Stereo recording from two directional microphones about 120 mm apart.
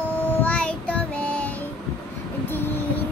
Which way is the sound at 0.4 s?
10° left (ahead or behind).